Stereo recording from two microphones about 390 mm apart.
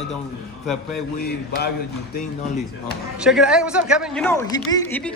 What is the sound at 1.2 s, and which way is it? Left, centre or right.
Speech, left.